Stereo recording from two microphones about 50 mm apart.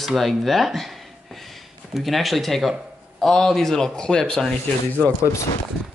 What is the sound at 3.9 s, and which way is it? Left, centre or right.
Speech, centre.